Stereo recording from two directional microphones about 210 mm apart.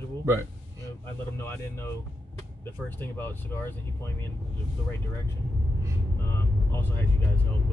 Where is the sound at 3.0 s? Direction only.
10° left (ahead or behind).